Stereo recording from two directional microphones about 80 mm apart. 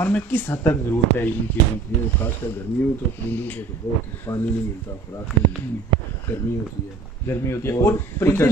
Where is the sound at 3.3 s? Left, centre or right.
Left.